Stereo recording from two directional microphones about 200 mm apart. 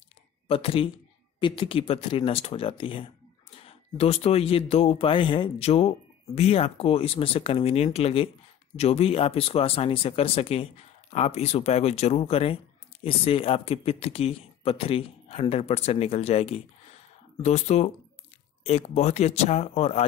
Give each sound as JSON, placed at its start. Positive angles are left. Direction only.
{"t": 0.5, "sound": "speech", "side_deg": 30}